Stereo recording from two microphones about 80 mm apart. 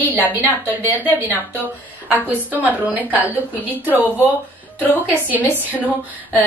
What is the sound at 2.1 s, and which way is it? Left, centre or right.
A woman's voice, right.